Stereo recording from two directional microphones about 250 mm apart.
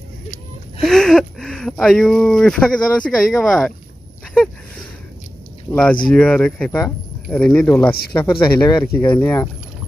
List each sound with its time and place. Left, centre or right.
0.7 s speech: centre
5.7 s speech: centre